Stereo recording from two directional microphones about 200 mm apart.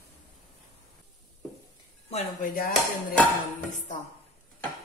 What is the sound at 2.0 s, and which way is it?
Speech, 40° left (ahead or behind).